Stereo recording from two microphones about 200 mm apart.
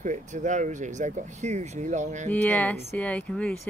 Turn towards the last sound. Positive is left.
turn(degrees=5)  # may be behind; listen again after turning